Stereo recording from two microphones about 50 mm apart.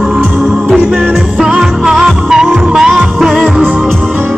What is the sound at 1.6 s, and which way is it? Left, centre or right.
Music, centre.